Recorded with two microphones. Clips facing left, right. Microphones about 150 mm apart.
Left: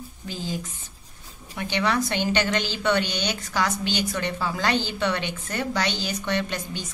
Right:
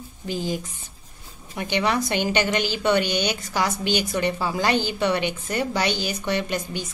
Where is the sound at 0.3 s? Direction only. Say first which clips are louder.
Right 5 dB; 15° right (ahead or behind).